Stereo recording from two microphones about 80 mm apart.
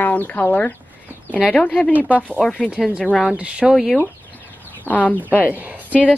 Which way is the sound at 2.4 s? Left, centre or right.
Centre.